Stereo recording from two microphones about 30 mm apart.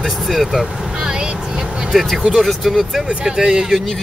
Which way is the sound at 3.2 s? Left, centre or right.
Right.